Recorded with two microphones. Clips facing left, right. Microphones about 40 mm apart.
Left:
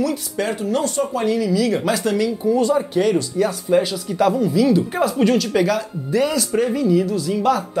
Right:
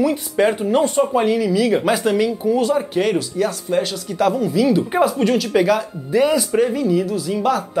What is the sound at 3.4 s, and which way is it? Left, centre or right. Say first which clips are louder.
Speech: left 2 dB; centre.